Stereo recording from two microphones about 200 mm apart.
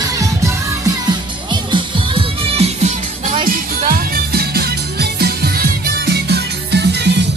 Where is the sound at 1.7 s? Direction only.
25° right (ahead or behind).